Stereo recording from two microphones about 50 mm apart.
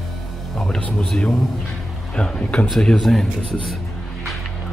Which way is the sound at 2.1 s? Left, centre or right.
Centre.